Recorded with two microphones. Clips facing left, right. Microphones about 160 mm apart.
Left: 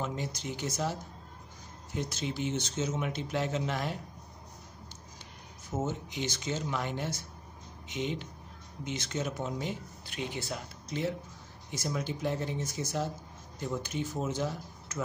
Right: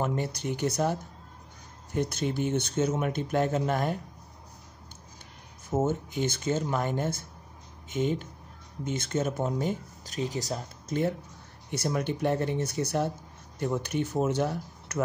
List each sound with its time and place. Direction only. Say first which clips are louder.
0.0 s speech: right 6 dB; 55° right (ahead or behind)
2.0 s speech: right 6 dB; 55° right (ahead or behind)
5.7 s speech: right 7 dB; 50° right (ahead or behind)
11.7 s speech: right 5 dB; 65° right (ahead or behind)